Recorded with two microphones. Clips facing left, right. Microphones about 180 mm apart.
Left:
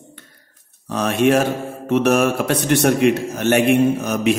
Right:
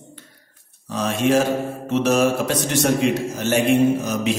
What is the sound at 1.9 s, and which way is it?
A man's voice, 60° left (ahead or behind).